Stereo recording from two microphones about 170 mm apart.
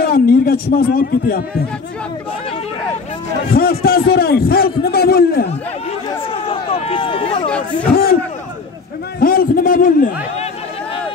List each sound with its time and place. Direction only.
0.0 s a man's voice: 60° left (ahead or behind)
3.5 s a man's voice: 60° left (ahead or behind)
5.5 s a sound: 35° left (ahead or behind)
9.2 s a man's voice: 60° left (ahead or behind)